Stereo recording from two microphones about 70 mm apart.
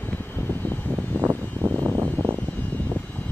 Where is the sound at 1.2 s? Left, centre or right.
Right.